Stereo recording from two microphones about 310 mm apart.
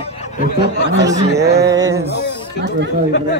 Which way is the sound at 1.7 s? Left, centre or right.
Centre.